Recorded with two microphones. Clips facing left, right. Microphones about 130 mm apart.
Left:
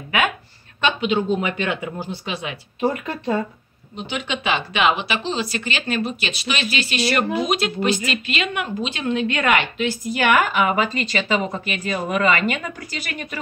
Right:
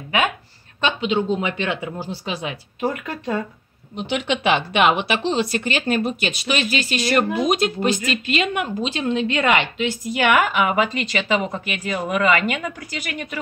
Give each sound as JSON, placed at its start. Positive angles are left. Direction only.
{"t": 0.7, "sound": "speech", "side_deg": -25}
{"t": 2.9, "sound": "speech", "side_deg": 0}
{"t": 3.9, "sound": "a woman's voice", "side_deg": -65}